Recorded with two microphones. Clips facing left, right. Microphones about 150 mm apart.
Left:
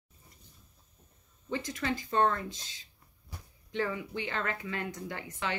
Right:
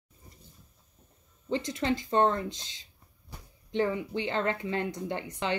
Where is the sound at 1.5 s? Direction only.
25° right (ahead or behind).